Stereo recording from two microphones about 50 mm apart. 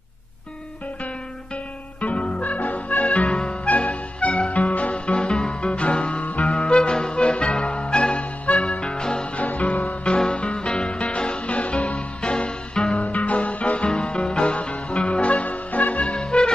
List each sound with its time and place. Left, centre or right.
2.0 s music: left
9.4 s music: left
13.0 s music: left